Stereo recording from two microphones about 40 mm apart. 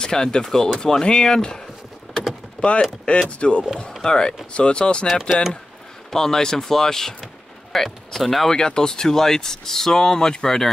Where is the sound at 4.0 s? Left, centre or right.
Centre.